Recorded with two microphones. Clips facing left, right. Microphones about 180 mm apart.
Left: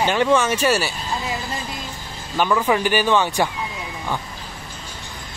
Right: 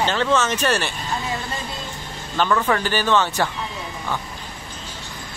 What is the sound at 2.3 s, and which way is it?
Speech, 10° left (ahead or behind).